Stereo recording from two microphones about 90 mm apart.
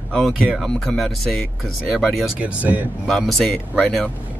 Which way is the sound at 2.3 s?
15° right (ahead or behind).